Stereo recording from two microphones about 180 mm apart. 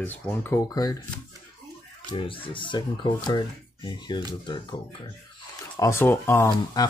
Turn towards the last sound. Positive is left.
turn(degrees=20)  # may be behind; listen again after turning